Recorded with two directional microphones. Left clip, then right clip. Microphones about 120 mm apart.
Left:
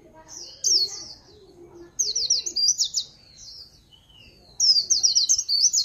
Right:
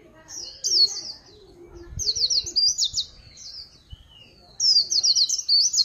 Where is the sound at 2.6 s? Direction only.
80° left.